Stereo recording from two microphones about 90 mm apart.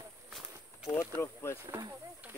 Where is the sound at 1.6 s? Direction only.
35° right (ahead or behind).